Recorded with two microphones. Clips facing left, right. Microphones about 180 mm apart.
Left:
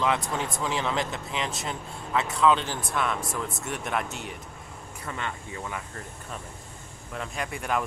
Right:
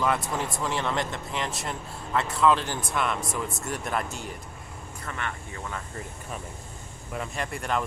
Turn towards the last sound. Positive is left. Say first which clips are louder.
# even
turn(degrees=5)  # may be behind; listen again after turning